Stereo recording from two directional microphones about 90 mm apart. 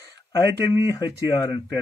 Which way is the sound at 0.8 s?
45° left (ahead or behind).